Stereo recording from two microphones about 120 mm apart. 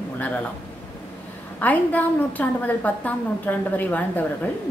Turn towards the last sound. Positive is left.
turn(degrees=15)  # may be behind; listen again after turning